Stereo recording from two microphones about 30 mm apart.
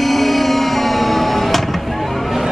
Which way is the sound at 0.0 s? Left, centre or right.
Centre.